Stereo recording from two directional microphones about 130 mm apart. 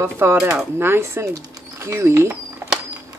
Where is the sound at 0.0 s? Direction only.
20° right (ahead or behind).